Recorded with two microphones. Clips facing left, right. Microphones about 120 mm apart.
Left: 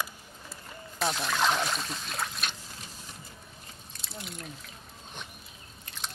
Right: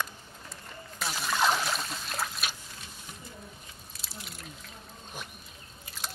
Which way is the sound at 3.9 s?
Centre (ahead or behind).